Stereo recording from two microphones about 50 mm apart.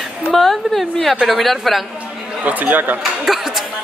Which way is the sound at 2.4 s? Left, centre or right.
Right.